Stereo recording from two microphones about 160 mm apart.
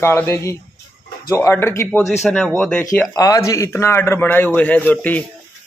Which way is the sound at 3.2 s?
20° left (ahead or behind).